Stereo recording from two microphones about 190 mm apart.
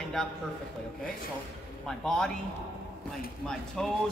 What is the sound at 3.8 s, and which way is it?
Speech, 5° left (ahead or behind).